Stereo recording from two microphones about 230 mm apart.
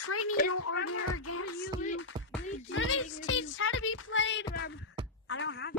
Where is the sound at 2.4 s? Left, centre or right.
Left.